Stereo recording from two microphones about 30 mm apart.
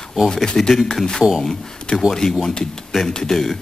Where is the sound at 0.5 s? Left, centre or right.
Centre.